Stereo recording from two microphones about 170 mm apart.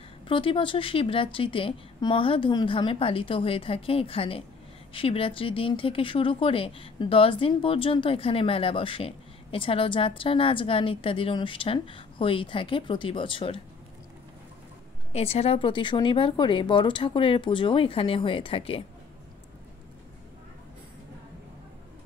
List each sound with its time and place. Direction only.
0.3 s speech: 30° left (ahead or behind)
15.1 s speech: 40° left (ahead or behind)